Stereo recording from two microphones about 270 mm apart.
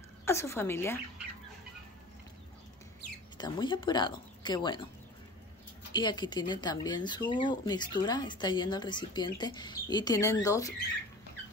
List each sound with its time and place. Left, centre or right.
0.2 s a woman's voice: centre
3.3 s speech: centre
5.9 s speech: centre